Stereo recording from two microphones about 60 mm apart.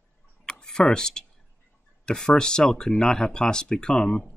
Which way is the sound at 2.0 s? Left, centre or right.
Centre.